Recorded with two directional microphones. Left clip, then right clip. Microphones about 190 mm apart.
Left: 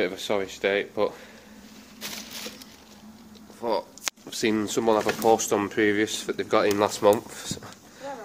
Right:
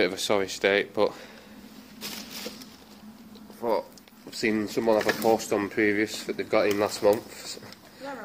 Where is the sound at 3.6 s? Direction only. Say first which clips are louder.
Even; centre (ahead or behind).